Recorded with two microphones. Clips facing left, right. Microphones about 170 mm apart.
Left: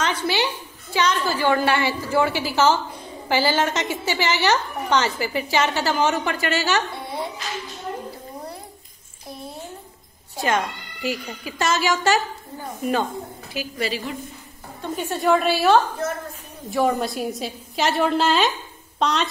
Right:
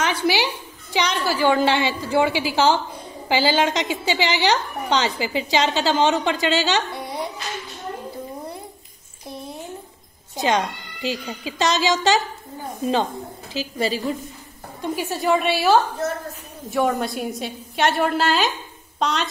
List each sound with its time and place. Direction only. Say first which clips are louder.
0.0 s a sound: right 2 dB; 10° right (ahead or behind)
0.9 s a woman's voice: even; 15° right (ahead or behind)
10.3 s a woman's voice: right 2 dB; 20° right (ahead or behind)
13.5 s a woman's voice: right 3 dB; 25° right (ahead or behind)
15.0 s a woman's voice: left 2 dB; centre (ahead or behind)